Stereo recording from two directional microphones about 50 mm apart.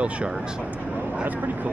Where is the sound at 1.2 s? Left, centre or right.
Right.